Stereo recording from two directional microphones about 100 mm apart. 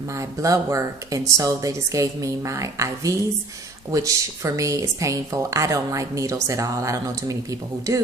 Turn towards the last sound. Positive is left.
turn(degrees=-35)  # may be behind; listen again after turning